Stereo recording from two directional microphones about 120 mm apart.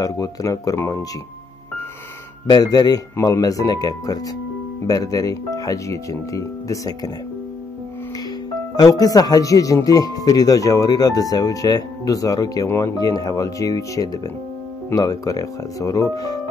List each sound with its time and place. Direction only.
0.0 s speech: 30° left (ahead or behind)
2.4 s speech: 30° left (ahead or behind)
8.7 s speech: 30° left (ahead or behind)